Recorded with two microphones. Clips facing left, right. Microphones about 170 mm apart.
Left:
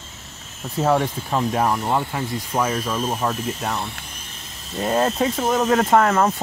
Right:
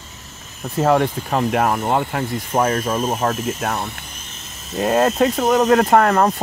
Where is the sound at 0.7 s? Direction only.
60° right (ahead or behind); by 3.3 s 45° right (ahead or behind).